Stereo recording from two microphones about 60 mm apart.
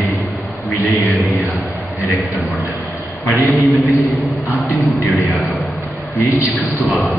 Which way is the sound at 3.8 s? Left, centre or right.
Centre.